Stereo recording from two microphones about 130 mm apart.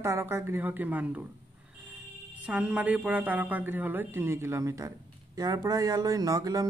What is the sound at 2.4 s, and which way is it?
Speech, 10° right (ahead or behind).